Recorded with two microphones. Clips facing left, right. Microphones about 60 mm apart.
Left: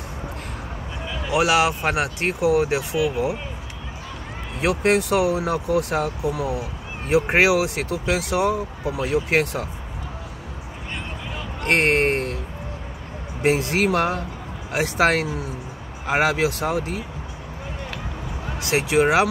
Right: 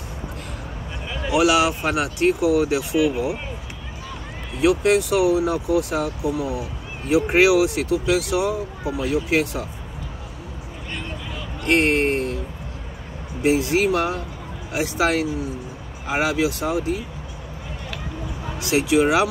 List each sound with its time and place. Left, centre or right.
1.3 s speech: left
4.6 s speech: left
6.3 s speech: left
7.1 s speech: left
11.6 s speech: left
13.4 s speech: left
18.6 s speech: left